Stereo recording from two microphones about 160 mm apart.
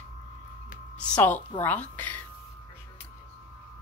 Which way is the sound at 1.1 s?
10° left (ahead or behind).